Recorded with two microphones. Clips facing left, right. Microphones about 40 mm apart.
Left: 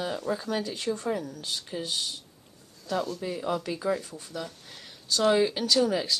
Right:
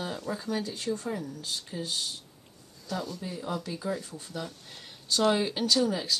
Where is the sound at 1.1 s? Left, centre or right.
Left.